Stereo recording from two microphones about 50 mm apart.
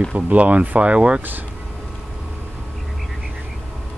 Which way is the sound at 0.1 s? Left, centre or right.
Right.